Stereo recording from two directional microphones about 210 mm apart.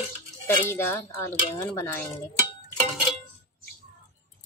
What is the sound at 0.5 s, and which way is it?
Speech, 10° left (ahead or behind).